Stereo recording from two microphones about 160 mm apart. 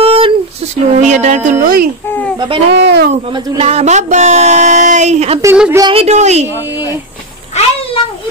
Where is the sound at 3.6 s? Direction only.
45° right (ahead or behind).